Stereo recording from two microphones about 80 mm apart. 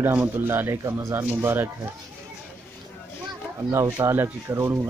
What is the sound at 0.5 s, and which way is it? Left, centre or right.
A man's voice, right.